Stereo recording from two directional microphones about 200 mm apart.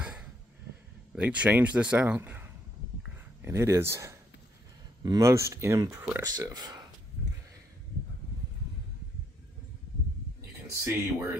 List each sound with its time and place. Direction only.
0.0 s a sound: 5° right (ahead or behind)
1.1 s a man's voice: 5° right (ahead or behind)
10.7 s a man's voice: 15° right (ahead or behind)